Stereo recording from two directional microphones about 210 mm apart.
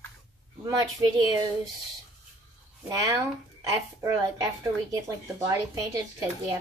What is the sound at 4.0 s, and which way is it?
Speech, 15° right (ahead or behind).